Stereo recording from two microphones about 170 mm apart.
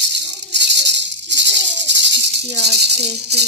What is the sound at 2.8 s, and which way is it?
Speech, 75° right (ahead or behind).